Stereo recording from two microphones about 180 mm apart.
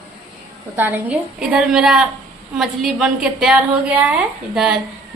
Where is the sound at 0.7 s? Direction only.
10° right (ahead or behind).